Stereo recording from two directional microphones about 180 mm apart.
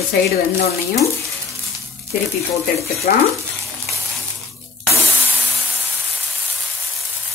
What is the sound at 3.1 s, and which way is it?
Speech, 50° left (ahead or behind).